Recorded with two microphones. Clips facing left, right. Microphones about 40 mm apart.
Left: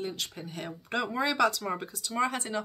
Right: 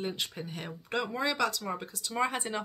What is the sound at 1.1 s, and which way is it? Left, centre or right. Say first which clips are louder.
Speech: left 5 dB; centre.